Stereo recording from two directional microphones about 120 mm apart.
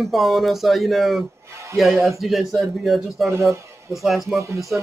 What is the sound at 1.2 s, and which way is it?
Speech, 25° right (ahead or behind).